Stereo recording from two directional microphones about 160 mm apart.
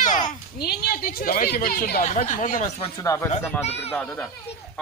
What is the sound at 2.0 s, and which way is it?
Speech, 50° left (ahead or behind).